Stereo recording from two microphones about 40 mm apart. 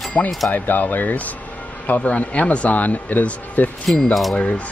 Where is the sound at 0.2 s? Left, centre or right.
Left.